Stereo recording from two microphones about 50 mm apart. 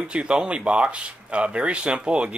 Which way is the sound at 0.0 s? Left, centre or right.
Centre.